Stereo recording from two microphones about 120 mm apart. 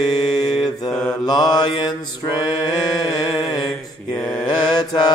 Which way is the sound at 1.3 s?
35° left (ahead or behind).